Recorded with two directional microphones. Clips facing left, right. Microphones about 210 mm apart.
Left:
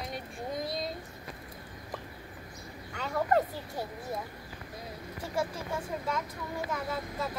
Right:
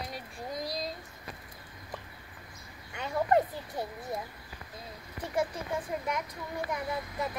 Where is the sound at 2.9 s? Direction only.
20° right (ahead or behind).